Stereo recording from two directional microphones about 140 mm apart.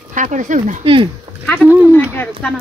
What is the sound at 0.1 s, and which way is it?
Speech, 60° right (ahead or behind).